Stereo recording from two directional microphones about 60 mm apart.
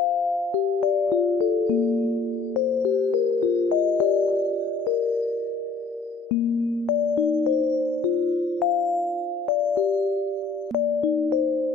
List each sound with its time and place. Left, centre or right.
1.8 s music: left
3.9 s music: left
8.5 s music: centre